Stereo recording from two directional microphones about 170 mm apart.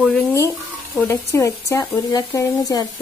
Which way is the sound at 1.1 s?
15° left (ahead or behind).